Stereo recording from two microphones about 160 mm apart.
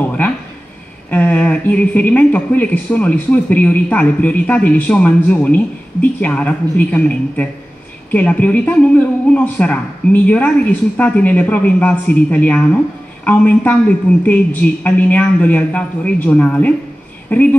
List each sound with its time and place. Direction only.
1.1 s speech: 10° left (ahead or behind)